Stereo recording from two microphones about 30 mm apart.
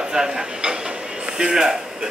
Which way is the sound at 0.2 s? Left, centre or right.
Right.